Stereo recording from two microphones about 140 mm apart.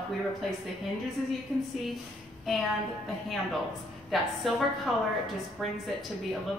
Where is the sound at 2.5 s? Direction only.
Centre (ahead or behind).